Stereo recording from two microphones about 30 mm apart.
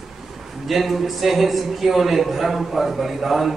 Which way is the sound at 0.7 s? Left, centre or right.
Centre.